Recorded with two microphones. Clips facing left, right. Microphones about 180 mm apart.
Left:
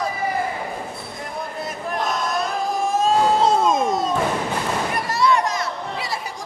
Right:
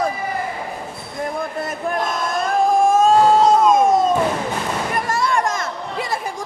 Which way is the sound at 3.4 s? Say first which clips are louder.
Right 4 dB; 25° left (ahead or behind).